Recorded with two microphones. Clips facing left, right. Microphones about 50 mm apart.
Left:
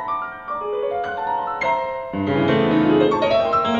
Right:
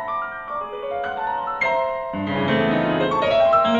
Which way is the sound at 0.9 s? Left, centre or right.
Centre.